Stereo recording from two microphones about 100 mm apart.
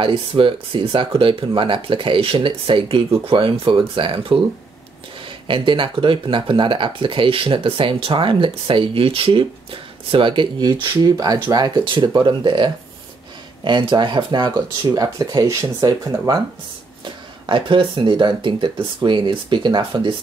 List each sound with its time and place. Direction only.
0.0 s speech: 60° right (ahead or behind)
5.5 s speech: 60° right (ahead or behind); by 16.3 s 40° right (ahead or behind)
17.0 s speech: 55° right (ahead or behind)